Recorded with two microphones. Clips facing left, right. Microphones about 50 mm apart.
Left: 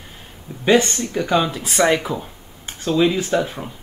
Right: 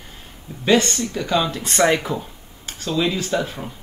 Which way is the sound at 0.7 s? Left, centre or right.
Centre.